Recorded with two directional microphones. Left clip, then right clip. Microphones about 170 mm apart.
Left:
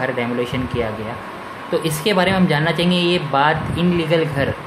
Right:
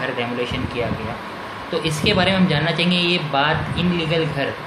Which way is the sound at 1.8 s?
30° left (ahead or behind).